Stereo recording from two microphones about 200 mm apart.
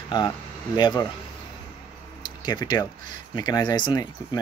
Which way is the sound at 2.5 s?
20° left (ahead or behind).